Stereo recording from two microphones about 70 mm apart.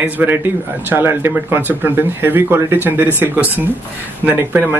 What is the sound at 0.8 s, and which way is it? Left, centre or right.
Speech, right.